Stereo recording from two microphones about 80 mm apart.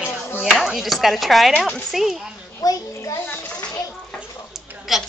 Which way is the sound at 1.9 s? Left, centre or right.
Centre.